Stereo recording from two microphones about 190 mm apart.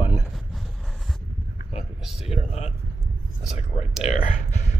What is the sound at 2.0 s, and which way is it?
Speech, centre (ahead or behind).